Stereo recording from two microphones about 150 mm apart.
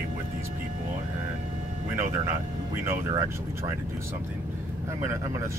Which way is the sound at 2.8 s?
20° right (ahead or behind).